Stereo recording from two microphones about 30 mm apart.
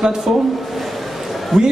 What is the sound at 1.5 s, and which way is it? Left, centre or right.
Speech, centre.